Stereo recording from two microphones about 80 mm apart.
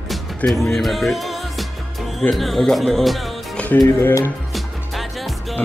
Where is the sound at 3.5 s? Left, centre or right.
Centre.